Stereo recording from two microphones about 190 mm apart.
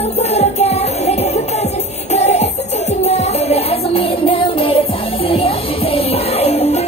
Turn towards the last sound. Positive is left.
turn(degrees=30)  # may be behind; listen again after turning